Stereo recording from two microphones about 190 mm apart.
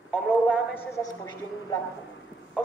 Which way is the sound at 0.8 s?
20° left (ahead or behind).